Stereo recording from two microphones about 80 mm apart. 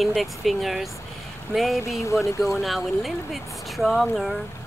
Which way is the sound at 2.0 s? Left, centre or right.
Left.